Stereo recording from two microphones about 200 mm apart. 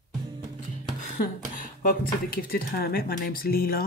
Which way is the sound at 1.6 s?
45° left (ahead or behind).